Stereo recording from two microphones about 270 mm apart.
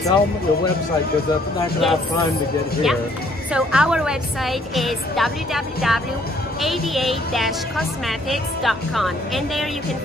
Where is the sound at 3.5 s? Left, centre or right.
Centre.